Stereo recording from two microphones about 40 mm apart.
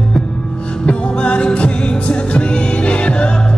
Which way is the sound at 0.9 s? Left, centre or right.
Left.